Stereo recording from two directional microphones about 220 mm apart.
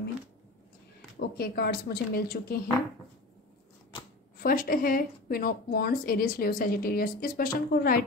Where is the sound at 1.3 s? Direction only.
45° left (ahead or behind).